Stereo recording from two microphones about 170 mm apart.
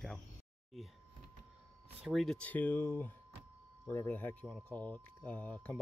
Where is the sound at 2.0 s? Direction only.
Centre (ahead or behind).